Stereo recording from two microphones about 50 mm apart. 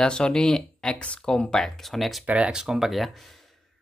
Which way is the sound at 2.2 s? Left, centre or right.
Right.